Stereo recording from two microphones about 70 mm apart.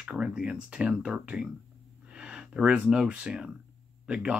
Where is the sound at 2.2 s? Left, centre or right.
Centre.